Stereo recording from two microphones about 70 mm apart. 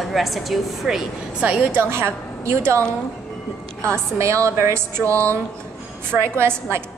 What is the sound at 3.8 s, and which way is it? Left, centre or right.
A woman's voice, right.